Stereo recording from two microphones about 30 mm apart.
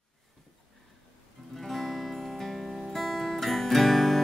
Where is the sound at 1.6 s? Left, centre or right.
Centre.